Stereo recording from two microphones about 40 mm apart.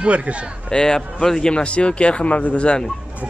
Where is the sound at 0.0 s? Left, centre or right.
Right.